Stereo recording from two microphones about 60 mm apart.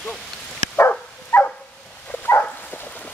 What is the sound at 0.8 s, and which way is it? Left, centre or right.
Dog, left.